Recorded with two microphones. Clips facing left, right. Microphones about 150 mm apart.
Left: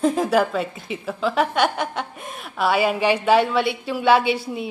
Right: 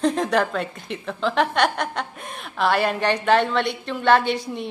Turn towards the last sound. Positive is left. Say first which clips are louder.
# left 1 dB
turn(degrees=5)  # may be behind; listen again after turning